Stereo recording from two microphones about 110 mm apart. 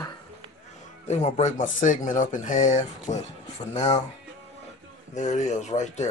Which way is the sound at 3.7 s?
75° left (ahead or behind).